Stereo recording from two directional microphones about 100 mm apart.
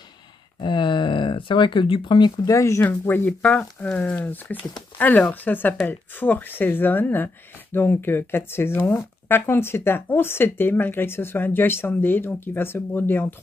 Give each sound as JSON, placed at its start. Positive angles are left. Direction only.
{"t": 0.6, "sound": "speech", "side_deg": 50}
{"t": 2.5, "sound": "speech", "side_deg": 30}
{"t": 2.9, "sound": "speech", "side_deg": 15}